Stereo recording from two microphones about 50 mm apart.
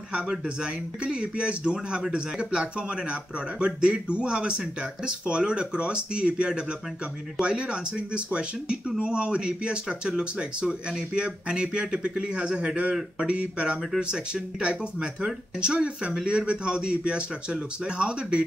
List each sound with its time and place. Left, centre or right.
0.1 s speech: centre